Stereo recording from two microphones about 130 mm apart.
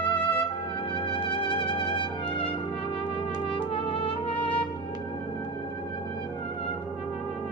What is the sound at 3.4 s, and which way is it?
Trumpet, 45° left (ahead or behind).